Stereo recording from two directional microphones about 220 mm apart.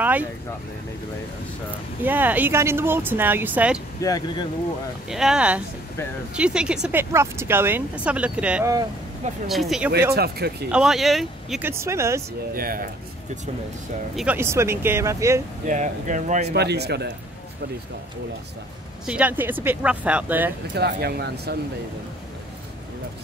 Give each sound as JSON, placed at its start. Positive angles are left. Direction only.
{"t": 2.0, "sound": "speech", "side_deg": -10}
{"t": 4.0, "sound": "speech", "side_deg": 20}
{"t": 5.1, "sound": "speech", "side_deg": 0}
{"t": 10.1, "sound": "speech", "side_deg": -45}
{"t": 10.7, "sound": "speech", "side_deg": 0}
{"t": 11.7, "sound": "speech", "side_deg": -10}
{"t": 12.5, "sound": "speech", "side_deg": -40}
{"t": 14.1, "sound": "speech", "side_deg": -10}
{"t": 15.6, "sound": "speech", "side_deg": -35}
{"t": 16.5, "sound": "speech", "side_deg": -50}
{"t": 19.0, "sound": "speech", "side_deg": -5}
{"t": 20.7, "sound": "speech", "side_deg": -45}